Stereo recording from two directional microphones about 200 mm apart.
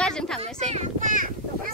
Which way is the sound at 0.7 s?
35° right (ahead or behind).